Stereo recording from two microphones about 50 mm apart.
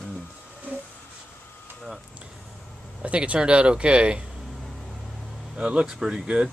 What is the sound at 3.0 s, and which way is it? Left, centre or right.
Speech, right.